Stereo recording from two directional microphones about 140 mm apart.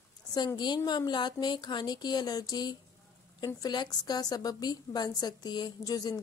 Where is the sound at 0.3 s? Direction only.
30° left (ahead or behind).